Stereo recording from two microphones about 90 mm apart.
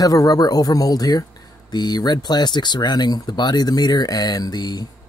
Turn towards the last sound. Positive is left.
turn(degrees=50)  # may be behind; listen again after turning